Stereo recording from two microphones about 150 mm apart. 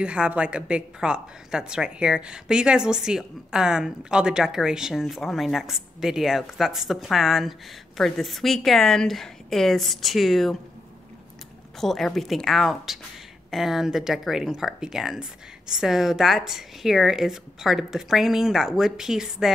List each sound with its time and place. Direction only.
0.0 s a woman's voice: 5° right (ahead or behind)
11.8 s a woman's voice: centre (ahead or behind)